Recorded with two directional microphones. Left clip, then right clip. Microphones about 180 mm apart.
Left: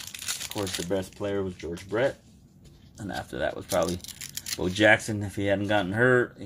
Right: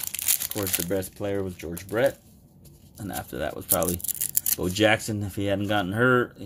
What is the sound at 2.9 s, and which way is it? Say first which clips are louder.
Speech: even; 25° right (ahead or behind).